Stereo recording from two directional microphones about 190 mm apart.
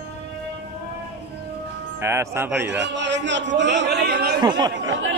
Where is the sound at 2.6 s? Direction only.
70° right (ahead or behind).